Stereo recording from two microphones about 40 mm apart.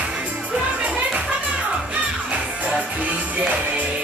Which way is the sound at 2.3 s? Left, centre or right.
Right.